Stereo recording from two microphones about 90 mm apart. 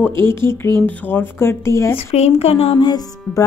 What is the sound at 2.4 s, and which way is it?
Speech, 90° left.